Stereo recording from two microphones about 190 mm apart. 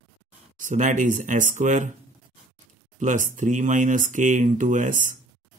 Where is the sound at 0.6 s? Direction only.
40° right (ahead or behind).